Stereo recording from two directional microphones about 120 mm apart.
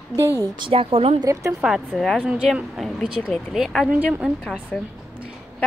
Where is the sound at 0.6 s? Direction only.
50° right (ahead or behind).